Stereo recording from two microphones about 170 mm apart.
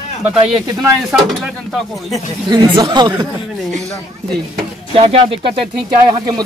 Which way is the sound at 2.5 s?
25° right (ahead or behind).